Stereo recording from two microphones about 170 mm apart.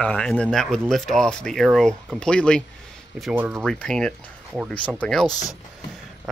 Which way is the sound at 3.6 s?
5° left (ahead or behind).